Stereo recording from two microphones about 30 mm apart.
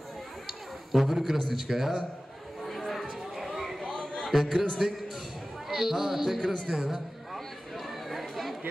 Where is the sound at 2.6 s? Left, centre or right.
Centre.